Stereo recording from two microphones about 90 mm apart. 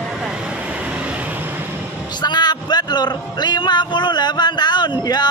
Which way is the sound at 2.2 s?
55° left (ahead or behind).